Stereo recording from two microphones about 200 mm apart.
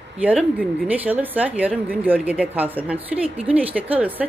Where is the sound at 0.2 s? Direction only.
5° right (ahead or behind).